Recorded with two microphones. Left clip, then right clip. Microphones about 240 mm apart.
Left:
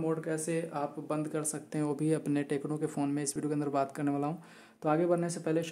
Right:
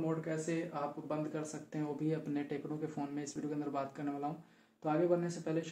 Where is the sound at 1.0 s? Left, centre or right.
Left.